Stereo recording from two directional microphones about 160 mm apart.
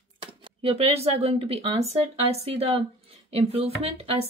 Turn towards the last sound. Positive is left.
turn(degrees=-40)  # may be behind; listen again after turning